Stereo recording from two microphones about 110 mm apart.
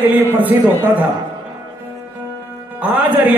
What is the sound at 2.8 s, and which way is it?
Speech, 15° right (ahead or behind).